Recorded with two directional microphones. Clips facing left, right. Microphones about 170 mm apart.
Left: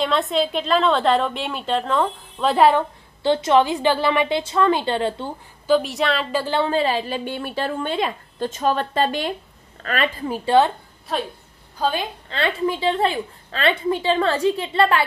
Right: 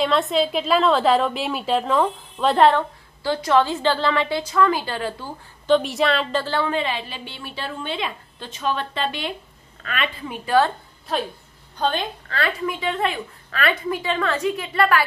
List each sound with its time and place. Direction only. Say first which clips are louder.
0.0 s a woman's voice: right 1 dB; centre (ahead or behind)
3.2 s a woman's voice: left 2 dB; 25° left (ahead or behind)
5.7 s a woman's voice: right 1 dB; centre (ahead or behind)
6.4 s a woman's voice: left 2 dB; 20° left (ahead or behind)
6.7 s a woman's voice: left 4 dB; 40° left (ahead or behind)
11.7 s a woman's voice: even; 5° left (ahead or behind)
12.3 s a woman's voice: left 4 dB; 25° left (ahead or behind)